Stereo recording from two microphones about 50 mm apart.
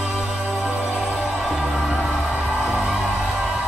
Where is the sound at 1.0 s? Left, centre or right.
Centre.